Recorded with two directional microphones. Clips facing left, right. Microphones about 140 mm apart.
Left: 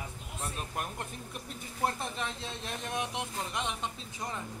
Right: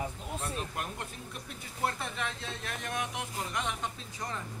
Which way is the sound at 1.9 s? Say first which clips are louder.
Even; 25° left (ahead or behind).